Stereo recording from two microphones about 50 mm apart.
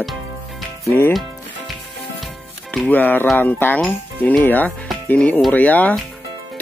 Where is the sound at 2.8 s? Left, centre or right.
Left.